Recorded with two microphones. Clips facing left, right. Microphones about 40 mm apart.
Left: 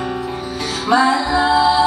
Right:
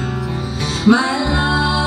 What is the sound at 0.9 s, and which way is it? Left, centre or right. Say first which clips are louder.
Music: even; left.